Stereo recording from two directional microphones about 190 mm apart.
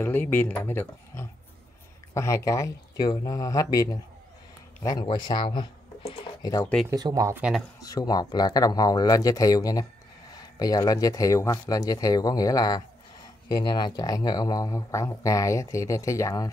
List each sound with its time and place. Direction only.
0.0 s speech: 10° left (ahead or behind)
6.9 s speech: 20° right (ahead or behind)
7.8 s speech: 20° left (ahead or behind)